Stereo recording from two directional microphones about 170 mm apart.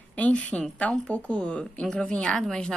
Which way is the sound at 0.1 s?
10° left (ahead or behind).